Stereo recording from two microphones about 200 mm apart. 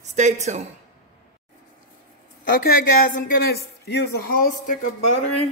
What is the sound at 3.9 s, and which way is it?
Speech, 55° left (ahead or behind).